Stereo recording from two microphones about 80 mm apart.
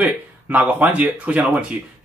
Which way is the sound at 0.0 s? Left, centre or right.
Right.